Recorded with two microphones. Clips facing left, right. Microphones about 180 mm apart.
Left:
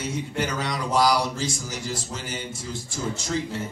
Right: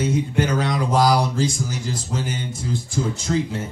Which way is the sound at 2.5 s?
55° right (ahead or behind).